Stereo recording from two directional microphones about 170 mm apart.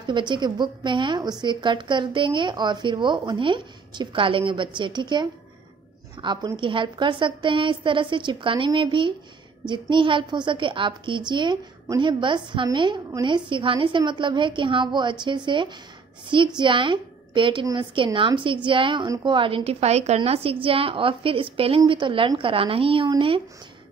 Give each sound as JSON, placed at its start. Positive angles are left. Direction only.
{"t": 0.0, "sound": "a woman's voice", "side_deg": -25}